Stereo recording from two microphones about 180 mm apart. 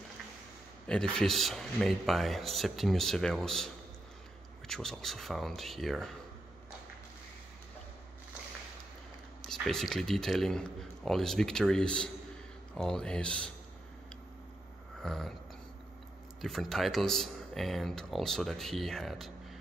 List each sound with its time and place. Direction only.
0.8 s speech: 5° left (ahead or behind)
9.4 s speech: 5° left (ahead or behind)
15.0 s speech: centre (ahead or behind)
16.3 s speech: centre (ahead or behind)